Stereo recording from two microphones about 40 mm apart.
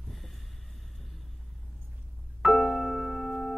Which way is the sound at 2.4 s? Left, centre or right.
Centre.